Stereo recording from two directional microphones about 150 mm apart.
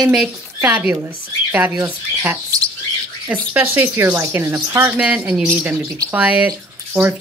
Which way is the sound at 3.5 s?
10° right (ahead or behind).